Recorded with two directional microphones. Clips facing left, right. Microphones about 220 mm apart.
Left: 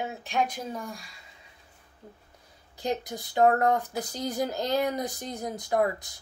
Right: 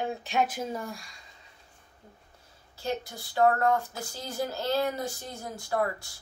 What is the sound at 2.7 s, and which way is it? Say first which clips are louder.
A woman's voice: left 3 dB; 20° left (ahead or behind).